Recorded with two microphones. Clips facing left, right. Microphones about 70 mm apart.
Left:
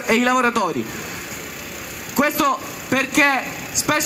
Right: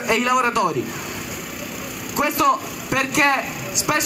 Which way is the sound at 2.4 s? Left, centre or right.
Centre.